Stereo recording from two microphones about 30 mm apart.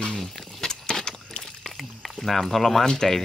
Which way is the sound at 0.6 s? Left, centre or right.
Left.